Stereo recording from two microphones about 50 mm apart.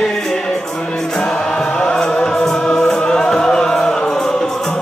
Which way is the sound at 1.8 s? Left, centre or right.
Centre.